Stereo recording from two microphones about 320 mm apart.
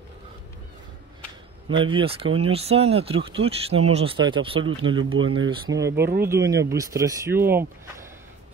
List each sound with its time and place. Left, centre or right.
1.7 s speech: centre